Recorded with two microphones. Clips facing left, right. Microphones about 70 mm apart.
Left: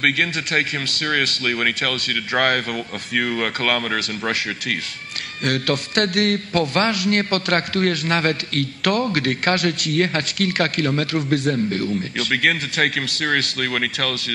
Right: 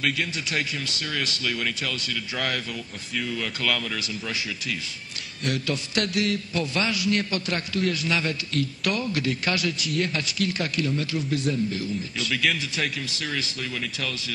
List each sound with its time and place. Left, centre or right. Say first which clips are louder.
0.0 s a man's voice: left 6 dB; left